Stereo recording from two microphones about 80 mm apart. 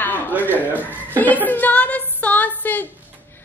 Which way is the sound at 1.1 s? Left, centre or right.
Left.